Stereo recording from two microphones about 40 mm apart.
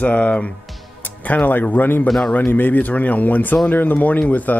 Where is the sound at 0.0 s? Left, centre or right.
Left.